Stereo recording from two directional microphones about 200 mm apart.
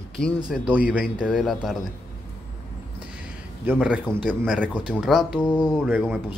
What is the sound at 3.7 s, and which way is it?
A man's voice, 5° right (ahead or behind).